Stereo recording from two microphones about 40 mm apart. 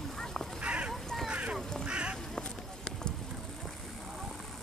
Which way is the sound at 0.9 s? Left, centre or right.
Centre.